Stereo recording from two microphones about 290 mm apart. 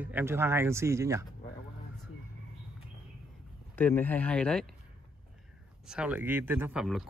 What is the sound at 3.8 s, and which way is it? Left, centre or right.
Speech, centre.